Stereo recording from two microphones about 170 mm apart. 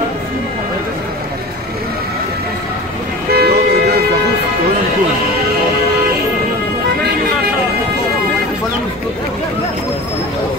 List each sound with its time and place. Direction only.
3.3 s toot: 70° right (ahead or behind)